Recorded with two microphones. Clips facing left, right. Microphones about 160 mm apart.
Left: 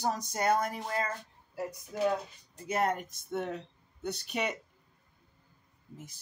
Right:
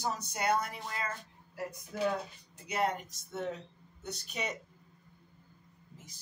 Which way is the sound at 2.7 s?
50° left (ahead or behind).